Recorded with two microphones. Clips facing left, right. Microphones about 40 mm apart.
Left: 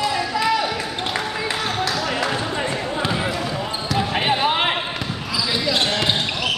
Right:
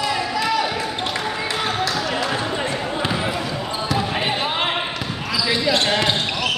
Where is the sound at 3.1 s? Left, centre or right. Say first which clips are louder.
Even; centre.